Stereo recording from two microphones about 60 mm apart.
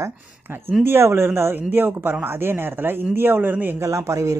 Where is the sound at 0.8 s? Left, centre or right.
Right.